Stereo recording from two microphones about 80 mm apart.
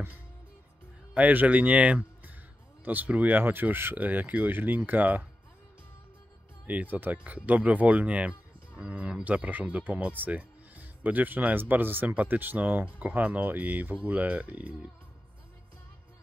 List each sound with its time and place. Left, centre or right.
1.1 s speech: right
6.7 s speech: right